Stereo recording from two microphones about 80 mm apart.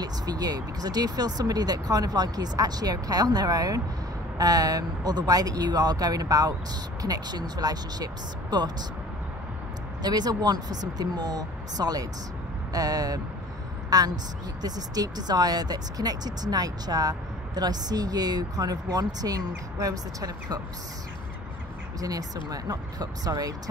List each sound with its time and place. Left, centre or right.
0.0 s speech: right
10.0 s a woman's voice: right
22.0 s speech: right